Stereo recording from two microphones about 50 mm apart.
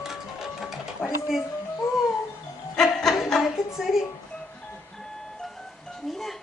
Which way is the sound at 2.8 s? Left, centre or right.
Centre.